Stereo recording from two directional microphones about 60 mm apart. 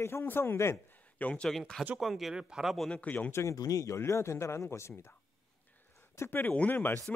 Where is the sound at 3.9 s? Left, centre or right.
Left.